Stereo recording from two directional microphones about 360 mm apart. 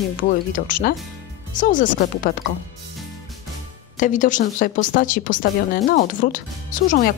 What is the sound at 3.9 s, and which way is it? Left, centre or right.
A woman's voice, left.